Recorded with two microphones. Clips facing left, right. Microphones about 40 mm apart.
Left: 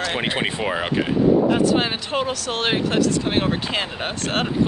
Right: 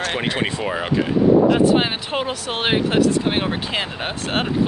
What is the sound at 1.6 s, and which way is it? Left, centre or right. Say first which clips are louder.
Speech: right 3 dB; centre.